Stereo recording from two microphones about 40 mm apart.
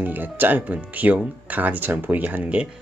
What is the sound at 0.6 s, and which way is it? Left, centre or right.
Speech, right.